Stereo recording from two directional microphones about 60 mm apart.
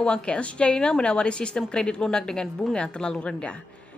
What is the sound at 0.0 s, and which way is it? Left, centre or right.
A woman's voice, centre.